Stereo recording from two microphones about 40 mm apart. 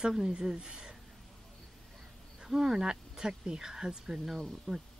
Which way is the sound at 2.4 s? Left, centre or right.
Centre.